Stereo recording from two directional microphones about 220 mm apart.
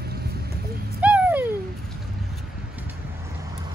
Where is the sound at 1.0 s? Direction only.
5° right (ahead or behind).